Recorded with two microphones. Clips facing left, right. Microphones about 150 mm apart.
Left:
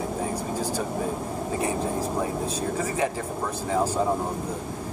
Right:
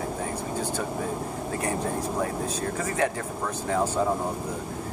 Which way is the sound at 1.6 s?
30° left (ahead or behind).